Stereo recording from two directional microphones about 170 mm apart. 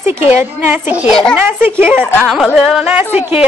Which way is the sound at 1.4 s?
10° right (ahead or behind).